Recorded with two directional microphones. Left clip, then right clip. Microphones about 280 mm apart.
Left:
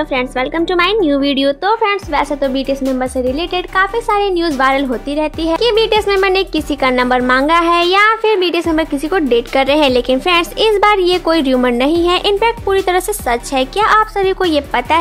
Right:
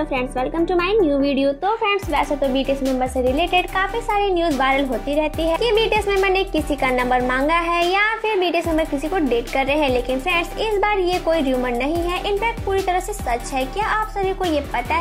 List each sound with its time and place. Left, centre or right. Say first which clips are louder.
0.1 s a woman's voice: left 6 dB; left
2.5 s speech: left 3 dB; centre
3.3 s a woman's voice: left 4 dB; left